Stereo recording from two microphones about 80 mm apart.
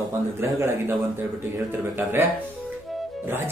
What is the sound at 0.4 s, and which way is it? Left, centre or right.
Speech, right.